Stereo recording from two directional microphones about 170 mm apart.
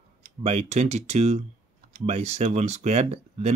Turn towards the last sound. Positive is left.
turn(degrees=-40)  # may be behind; listen again after turning